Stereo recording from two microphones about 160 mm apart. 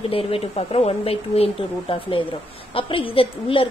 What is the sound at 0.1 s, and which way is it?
Speech, 35° left (ahead or behind).